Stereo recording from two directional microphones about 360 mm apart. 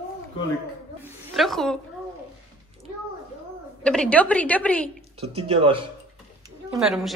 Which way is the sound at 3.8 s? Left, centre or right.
Centre.